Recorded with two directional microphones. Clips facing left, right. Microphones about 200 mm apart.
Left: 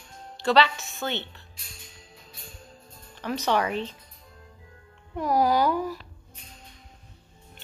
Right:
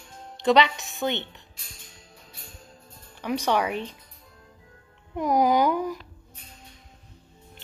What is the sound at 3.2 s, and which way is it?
Speech, 10° right (ahead or behind).